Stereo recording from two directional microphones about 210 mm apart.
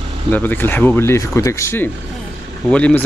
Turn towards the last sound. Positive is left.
turn(degrees=5)  # may be behind; listen again after turning